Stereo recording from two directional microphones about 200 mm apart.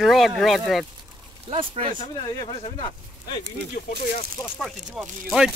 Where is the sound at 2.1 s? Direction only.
20° left (ahead or behind).